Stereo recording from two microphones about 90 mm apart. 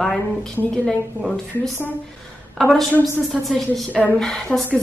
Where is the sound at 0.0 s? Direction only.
5° left (ahead or behind).